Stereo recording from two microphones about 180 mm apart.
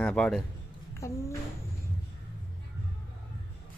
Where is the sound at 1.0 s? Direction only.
15° left (ahead or behind).